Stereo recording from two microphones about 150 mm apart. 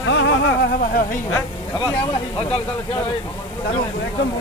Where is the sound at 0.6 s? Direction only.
80° left; by 1.2 s 65° left (ahead or behind).